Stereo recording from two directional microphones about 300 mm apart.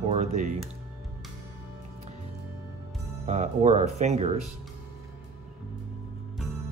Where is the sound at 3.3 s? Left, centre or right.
Right.